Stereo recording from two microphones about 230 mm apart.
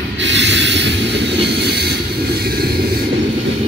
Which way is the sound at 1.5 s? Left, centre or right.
Right.